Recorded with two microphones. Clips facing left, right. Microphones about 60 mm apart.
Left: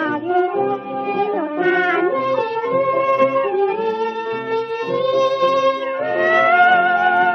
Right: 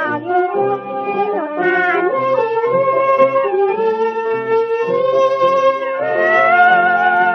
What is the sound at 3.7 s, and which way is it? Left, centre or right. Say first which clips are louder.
Music: right 4 dB; right.